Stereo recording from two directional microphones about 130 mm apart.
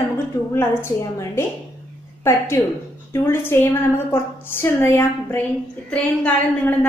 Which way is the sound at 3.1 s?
20° left (ahead or behind).